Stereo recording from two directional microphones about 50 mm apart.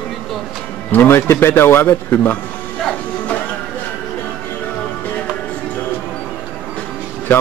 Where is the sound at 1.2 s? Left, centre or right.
Left.